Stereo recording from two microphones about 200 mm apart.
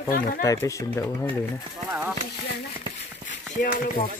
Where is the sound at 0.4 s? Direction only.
15° left (ahead or behind).